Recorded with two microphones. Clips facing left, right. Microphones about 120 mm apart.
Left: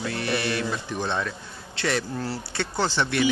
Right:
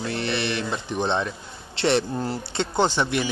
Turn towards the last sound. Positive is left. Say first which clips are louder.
# right 3 dB
turn(degrees=-15)  # may be behind; listen again after turning